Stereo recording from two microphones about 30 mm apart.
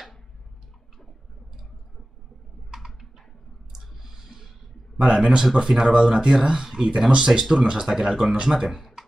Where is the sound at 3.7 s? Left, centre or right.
Centre.